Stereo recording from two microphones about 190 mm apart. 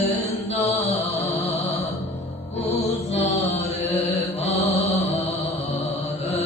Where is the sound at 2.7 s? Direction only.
30° left (ahead or behind).